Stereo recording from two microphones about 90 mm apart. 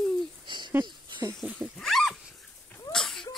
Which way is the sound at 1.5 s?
Centre (ahead or behind).